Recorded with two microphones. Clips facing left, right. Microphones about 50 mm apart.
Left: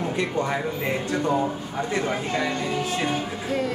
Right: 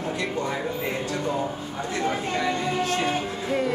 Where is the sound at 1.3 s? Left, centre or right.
Centre.